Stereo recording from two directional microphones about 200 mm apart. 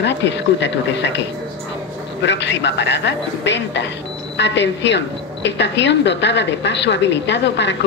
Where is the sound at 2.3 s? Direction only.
60° left (ahead or behind).